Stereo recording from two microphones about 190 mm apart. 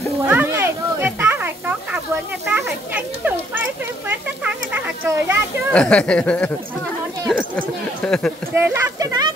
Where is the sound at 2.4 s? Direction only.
10° right (ahead or behind).